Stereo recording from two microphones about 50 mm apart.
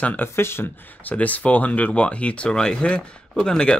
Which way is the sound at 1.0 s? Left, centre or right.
Left.